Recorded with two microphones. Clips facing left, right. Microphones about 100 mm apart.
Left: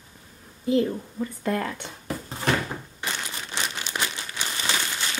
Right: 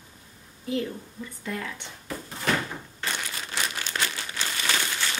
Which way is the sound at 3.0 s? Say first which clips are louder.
Right 1 dB; 15° left (ahead or behind).